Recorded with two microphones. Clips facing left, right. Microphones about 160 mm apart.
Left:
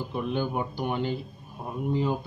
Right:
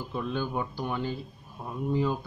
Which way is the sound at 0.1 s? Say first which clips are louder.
Left 2 dB; 15° left (ahead or behind).